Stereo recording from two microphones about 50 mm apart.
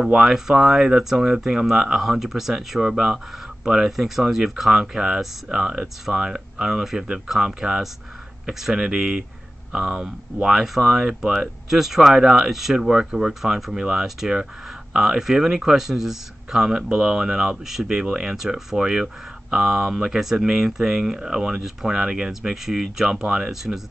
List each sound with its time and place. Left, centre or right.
0.0 s speech: centre
22.3 s speech: centre